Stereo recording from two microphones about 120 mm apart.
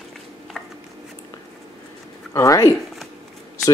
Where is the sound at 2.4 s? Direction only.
25° left (ahead or behind).